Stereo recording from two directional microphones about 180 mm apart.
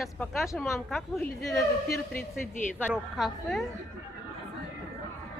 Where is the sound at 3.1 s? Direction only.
Centre (ahead or behind).